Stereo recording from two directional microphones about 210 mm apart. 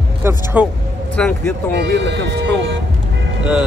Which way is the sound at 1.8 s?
55° right (ahead or behind).